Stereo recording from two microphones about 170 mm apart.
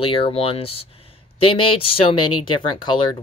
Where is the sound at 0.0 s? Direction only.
30° left (ahead or behind).